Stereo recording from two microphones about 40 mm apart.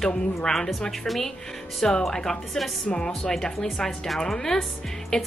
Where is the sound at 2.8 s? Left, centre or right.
Left.